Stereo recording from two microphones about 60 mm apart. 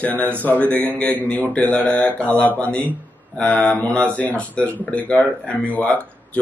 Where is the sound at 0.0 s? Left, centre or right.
Left.